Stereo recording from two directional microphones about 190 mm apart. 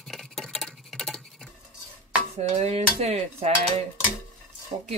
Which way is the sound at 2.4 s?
35° right (ahead or behind).